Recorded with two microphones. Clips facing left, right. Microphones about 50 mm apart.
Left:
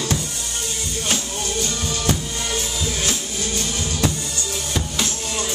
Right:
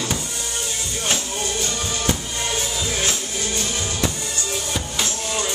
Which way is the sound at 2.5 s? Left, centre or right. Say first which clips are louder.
Right 1 dB; right.